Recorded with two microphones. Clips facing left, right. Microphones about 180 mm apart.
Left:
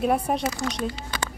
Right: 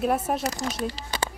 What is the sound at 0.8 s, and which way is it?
Speech, 35° right (ahead or behind).